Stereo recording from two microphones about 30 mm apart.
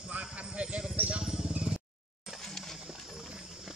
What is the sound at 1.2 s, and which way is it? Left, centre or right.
Vehicle, centre.